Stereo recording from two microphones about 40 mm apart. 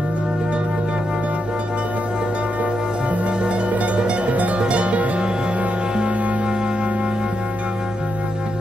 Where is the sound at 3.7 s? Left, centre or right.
Right.